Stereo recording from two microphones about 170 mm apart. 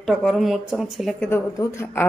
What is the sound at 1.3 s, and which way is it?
Speech, 15° left (ahead or behind).